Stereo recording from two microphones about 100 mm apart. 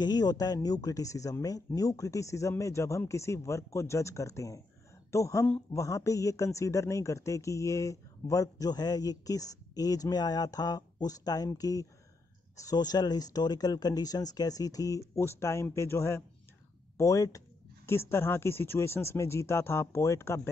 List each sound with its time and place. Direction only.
0.0 s speech: 40° left (ahead or behind); by 20.4 s 25° left (ahead or behind)